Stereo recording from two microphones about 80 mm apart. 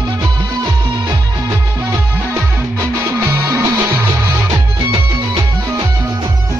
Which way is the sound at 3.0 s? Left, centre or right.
Right.